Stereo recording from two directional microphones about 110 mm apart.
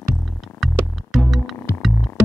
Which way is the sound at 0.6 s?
Centre (ahead or behind).